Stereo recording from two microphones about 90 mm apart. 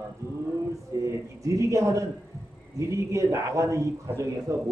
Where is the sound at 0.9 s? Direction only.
35° right (ahead or behind).